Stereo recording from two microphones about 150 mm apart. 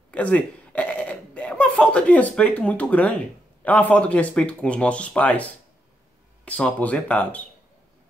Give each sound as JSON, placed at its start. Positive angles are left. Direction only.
{"t": 0.1, "sound": "speech", "side_deg": 10}